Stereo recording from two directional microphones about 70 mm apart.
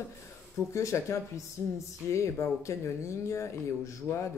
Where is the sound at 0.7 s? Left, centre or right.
Left.